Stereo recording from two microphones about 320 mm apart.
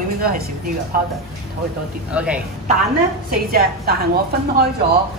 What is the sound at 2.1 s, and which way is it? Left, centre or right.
Speech, centre.